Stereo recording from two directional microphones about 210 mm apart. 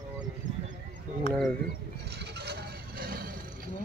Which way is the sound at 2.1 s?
50° right (ahead or behind).